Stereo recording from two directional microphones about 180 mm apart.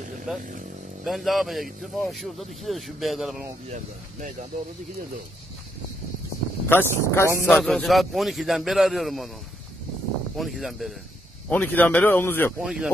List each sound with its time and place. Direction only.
0.3 s speech: 5° right (ahead or behind)
3.6 s speech: 45° right (ahead or behind)
6.7 s speech: 10° left (ahead or behind)
10.3 s speech: centre (ahead or behind)
11.4 s speech: 10° left (ahead or behind)
12.5 s speech: 5° right (ahead or behind)